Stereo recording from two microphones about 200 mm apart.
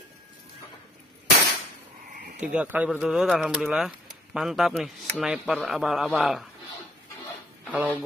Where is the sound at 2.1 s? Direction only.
40° right (ahead or behind).